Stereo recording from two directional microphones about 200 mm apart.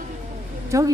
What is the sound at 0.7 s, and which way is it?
Speech, 15° right (ahead or behind).